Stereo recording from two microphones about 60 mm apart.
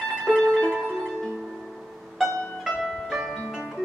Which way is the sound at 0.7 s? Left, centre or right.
Centre.